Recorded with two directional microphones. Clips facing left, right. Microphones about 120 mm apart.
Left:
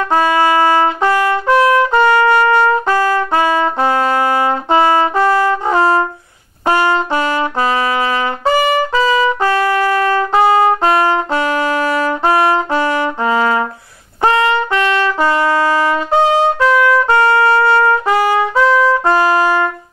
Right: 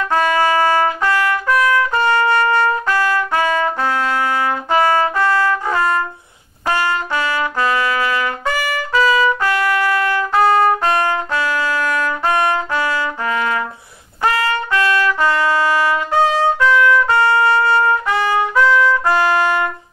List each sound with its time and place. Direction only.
0.1 s trumpet: 20° left (ahead or behind); by 4.2 s 35° left (ahead or behind)
4.2 s trumpet: 25° left (ahead or behind)
10.4 s trumpet: 15° left (ahead or behind)
10.9 s trumpet: 30° left (ahead or behind)